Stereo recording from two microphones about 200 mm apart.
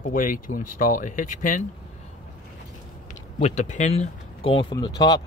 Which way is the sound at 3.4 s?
35° left (ahead or behind).